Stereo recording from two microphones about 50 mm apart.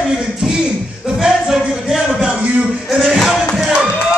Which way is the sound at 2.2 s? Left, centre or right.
Right.